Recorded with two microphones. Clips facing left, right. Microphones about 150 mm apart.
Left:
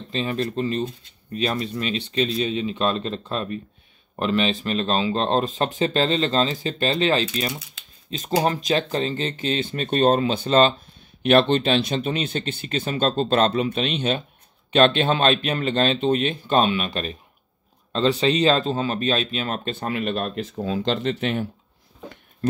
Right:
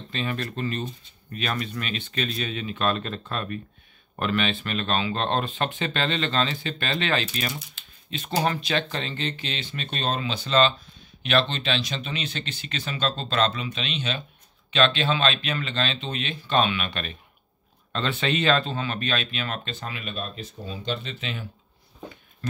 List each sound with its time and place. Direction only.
0.1 s speech: 30° left (ahead or behind); by 21.5 s 60° left (ahead or behind)